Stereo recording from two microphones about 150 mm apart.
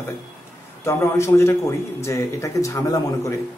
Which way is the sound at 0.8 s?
20° left (ahead or behind).